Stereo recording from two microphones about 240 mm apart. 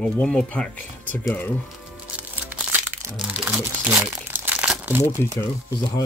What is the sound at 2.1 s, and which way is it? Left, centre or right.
Music, centre.